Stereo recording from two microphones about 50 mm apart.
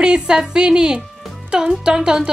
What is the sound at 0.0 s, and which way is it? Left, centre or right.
A woman's voice, centre.